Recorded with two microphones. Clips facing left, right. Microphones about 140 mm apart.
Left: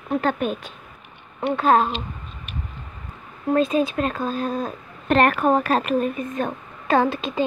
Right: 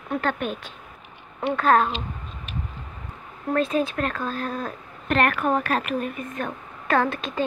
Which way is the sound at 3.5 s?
15° left (ahead or behind).